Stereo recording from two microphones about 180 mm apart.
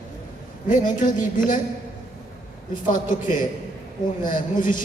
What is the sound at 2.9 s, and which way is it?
A man's voice, 45° left (ahead or behind).